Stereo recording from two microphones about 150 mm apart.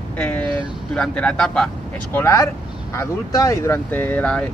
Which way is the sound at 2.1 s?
20° left (ahead or behind).